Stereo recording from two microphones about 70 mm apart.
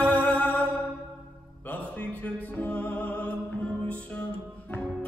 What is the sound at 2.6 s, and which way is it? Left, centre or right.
Music, left.